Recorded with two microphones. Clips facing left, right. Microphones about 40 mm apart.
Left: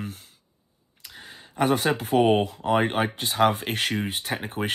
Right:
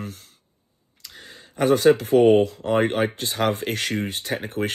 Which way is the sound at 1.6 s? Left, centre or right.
Left.